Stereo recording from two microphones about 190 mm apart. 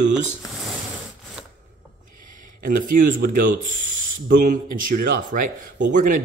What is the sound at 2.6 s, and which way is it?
A man's voice, 45° right (ahead or behind).